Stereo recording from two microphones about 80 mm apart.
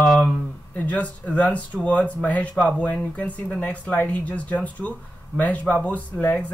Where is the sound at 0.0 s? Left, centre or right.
Centre.